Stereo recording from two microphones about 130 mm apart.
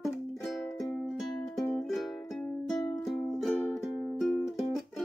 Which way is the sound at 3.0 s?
Centre (ahead or behind).